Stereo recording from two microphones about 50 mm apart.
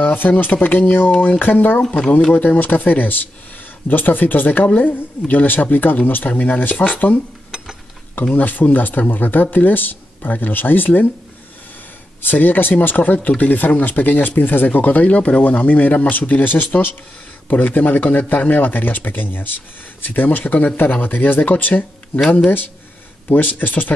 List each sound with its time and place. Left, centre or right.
0.0 s a man's voice: left
1.8 s speech: centre
2.5 s a man's voice: left
8.3 s a man's voice: left
12.2 s a man's voice: left
23.2 s a man's voice: left